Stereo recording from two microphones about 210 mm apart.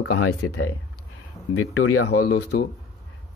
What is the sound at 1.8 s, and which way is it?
Speech, 85° left.